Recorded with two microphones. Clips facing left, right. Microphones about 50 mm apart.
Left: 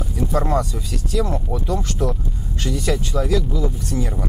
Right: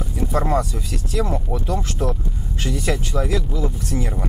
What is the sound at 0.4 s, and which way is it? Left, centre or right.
Speech, centre.